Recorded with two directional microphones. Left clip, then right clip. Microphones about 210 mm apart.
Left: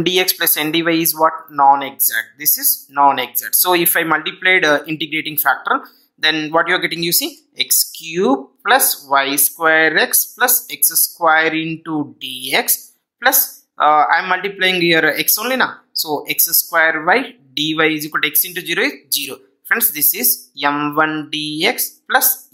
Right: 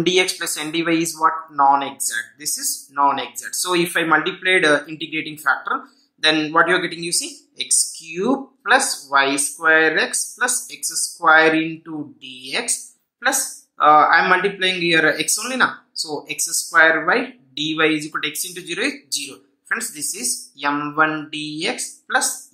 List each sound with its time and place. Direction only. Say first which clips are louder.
0.0 s speech: left 2 dB; 35° left (ahead or behind)